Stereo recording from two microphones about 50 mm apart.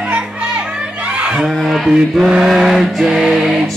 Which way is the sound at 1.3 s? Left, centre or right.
Centre.